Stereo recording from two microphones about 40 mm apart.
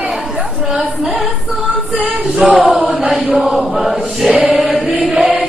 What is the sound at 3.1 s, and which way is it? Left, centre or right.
Chant, centre.